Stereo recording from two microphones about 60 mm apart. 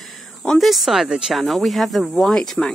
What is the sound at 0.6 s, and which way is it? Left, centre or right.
Speech, centre.